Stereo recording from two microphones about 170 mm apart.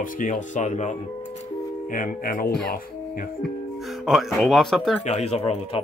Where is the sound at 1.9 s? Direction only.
55° left (ahead or behind).